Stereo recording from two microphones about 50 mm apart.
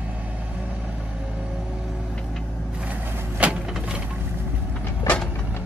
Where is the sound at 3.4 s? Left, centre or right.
Right.